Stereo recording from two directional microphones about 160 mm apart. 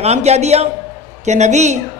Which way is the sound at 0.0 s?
45° right (ahead or behind).